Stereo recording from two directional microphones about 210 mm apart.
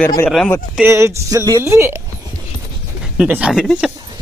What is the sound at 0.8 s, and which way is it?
Speech, 10° right (ahead or behind).